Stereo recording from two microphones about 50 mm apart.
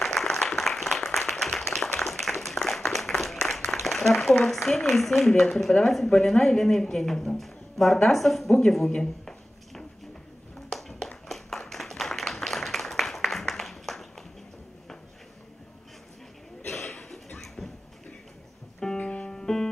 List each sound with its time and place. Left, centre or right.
0.2 s applause: centre
3.8 s a sound: centre
4.6 s speech: centre
10.7 s clapping: centre
16.6 s a sound: centre
18.9 s music: left